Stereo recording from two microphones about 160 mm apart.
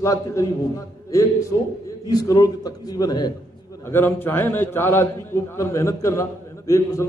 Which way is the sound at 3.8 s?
15° left (ahead or behind).